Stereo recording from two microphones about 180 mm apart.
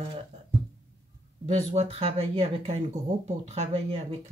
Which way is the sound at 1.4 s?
35° right (ahead or behind).